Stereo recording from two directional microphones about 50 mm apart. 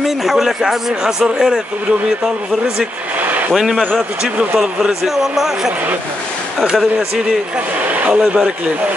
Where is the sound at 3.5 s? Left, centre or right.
Centre.